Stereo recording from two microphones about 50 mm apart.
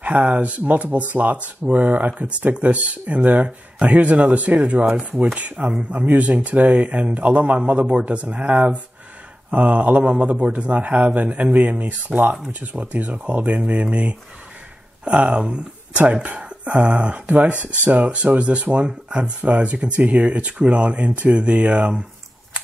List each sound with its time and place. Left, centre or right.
0.0 s speech: right
12.1 s speech: centre
12.5 s speech: right